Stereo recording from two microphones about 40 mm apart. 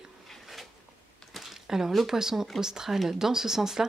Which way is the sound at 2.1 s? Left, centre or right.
Centre.